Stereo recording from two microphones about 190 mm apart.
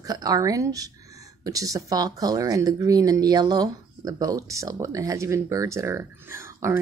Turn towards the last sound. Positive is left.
turn(degrees=-15)  # may be behind; listen again after turning